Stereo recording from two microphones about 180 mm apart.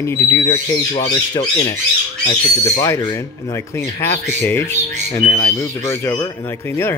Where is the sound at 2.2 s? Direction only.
35° left (ahead or behind).